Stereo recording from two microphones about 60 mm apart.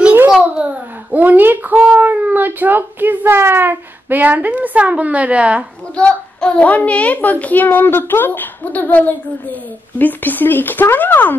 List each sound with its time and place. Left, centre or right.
1.1 s a child's voice: right
5.9 s a child's voice: centre